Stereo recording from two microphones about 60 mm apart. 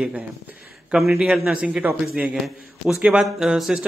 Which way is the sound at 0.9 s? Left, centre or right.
Centre.